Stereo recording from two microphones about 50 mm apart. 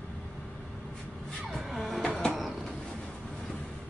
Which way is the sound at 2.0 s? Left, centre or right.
Left.